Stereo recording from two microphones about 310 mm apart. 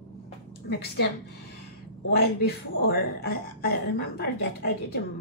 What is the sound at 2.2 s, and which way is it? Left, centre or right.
A woman's voice, left.